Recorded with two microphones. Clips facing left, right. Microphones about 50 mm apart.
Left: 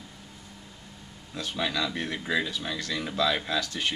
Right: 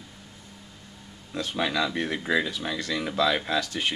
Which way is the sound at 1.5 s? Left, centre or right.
Centre.